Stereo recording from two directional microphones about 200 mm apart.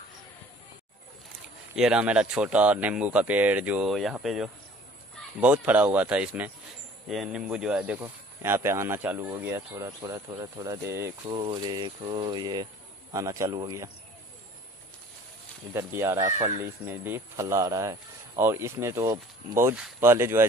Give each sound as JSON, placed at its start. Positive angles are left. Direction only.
{"t": 1.8, "sound": "speech", "side_deg": -5}
{"t": 11.2, "sound": "a sound", "side_deg": -25}
{"t": 13.1, "sound": "speech", "side_deg": -15}
{"t": 15.7, "sound": "speech", "side_deg": -15}